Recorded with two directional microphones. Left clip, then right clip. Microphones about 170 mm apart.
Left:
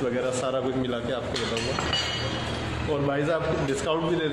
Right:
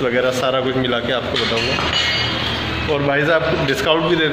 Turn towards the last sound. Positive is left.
turn(degrees=-5)  # may be behind; listen again after turning